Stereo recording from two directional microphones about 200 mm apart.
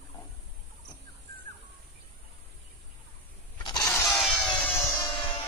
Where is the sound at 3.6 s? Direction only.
20° left (ahead or behind).